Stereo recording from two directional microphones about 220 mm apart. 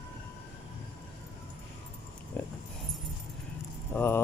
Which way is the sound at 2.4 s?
10° left (ahead or behind).